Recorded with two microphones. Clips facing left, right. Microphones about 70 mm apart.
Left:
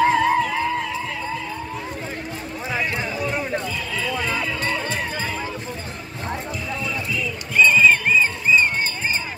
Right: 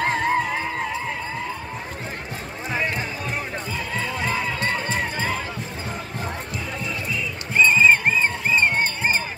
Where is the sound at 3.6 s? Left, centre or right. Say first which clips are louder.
Left 1 dB; right.